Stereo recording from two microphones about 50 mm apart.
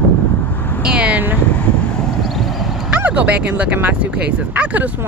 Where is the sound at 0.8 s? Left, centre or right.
Right.